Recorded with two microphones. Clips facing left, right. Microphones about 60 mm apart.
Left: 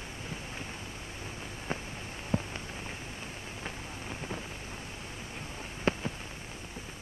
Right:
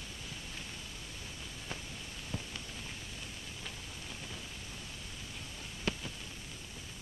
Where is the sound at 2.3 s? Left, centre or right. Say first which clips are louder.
Left 11 dB; left.